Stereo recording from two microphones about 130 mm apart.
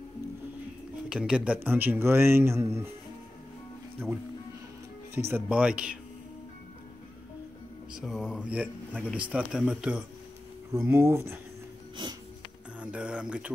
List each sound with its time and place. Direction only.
1.0 s speech: 5° right (ahead or behind)
5.3 s speech: 10° right (ahead or behind)
7.9 s speech: 5° right (ahead or behind)
10.7 s speech: 20° right (ahead or behind)
12.8 s speech: 10° right (ahead or behind)